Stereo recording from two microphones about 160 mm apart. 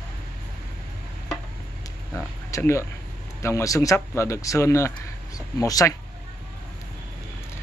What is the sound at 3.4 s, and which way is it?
A man's voice, 20° left (ahead or behind).